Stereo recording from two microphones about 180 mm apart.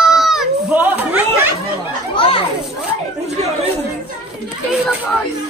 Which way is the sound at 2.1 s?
30° left (ahead or behind).